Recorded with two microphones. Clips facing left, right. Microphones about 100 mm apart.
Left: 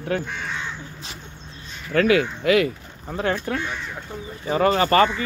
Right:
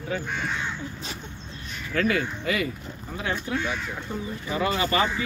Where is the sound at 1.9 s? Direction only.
75° left (ahead or behind).